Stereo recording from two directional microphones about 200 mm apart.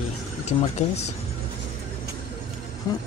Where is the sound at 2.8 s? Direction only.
20° left (ahead or behind).